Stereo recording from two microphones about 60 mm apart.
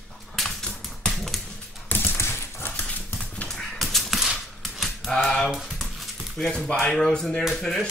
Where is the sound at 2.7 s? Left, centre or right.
Left.